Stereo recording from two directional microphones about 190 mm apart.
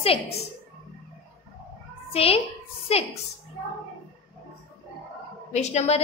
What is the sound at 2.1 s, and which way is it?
Speech, 30° left (ahead or behind).